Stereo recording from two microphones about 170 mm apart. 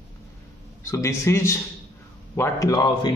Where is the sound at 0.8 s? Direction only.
15° left (ahead or behind).